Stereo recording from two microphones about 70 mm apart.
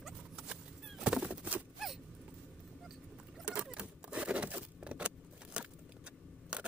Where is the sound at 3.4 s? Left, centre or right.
Centre.